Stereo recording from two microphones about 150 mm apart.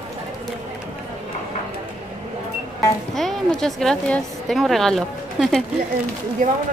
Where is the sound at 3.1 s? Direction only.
Centre (ahead or behind).